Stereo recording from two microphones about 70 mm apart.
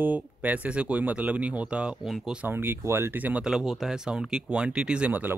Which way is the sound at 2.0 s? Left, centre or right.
Centre.